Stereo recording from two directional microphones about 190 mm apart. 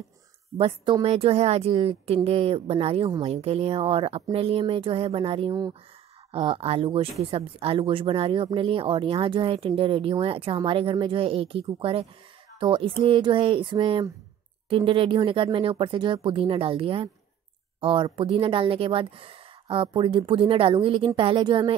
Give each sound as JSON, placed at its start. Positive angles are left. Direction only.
{"t": 0.6, "sound": "speech", "side_deg": -25}